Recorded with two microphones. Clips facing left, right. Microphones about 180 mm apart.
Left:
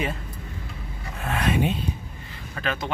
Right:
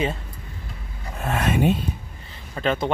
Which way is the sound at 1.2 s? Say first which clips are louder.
Right 3 dB; 45° right (ahead or behind).